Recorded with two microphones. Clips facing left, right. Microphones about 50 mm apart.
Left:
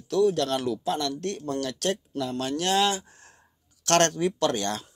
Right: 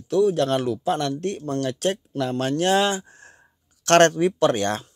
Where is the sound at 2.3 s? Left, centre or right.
Right.